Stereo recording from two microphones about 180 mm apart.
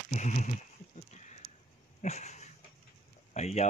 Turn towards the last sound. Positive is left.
turn(degrees=40)  # may be behind; listen again after turning